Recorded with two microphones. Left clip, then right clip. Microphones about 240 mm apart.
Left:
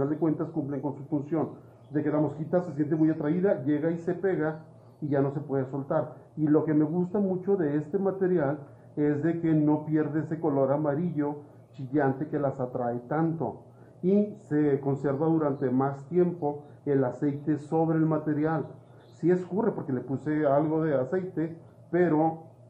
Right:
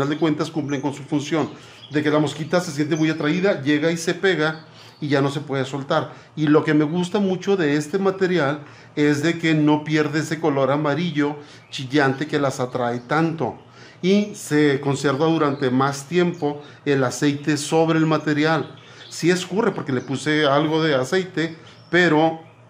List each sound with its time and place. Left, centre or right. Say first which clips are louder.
0.0 s speech: right 7 dB; right
2.0 s speech: right 8 dB; right
14.5 s speech: right 8 dB; right